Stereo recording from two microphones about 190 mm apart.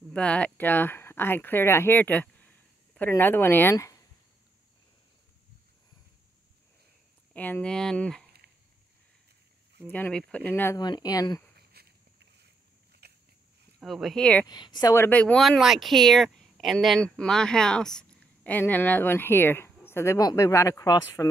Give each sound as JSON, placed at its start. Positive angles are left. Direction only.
{"t": 0.1, "sound": "speech", "side_deg": 5}
{"t": 7.3, "sound": "speech", "side_deg": 10}
{"t": 9.8, "sound": "speech", "side_deg": 10}
{"t": 11.5, "sound": "a sound", "side_deg": -55}
{"t": 13.0, "sound": "a sound", "side_deg": -60}
{"t": 13.7, "sound": "speech", "side_deg": 0}
{"t": 14.4, "sound": "speech", "side_deg": 20}